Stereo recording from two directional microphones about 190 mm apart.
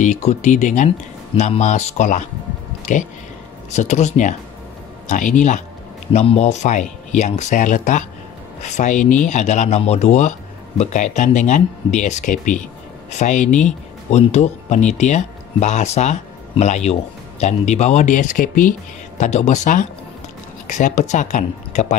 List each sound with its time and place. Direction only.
0.0 s speech: 40° left (ahead or behind)